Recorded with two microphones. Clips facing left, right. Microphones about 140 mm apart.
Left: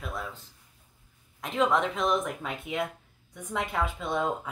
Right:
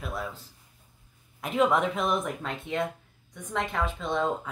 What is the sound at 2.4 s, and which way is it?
A woman's voice, 5° left (ahead or behind).